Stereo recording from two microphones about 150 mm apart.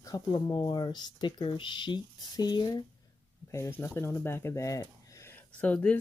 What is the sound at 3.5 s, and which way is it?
Speech, 15° left (ahead or behind).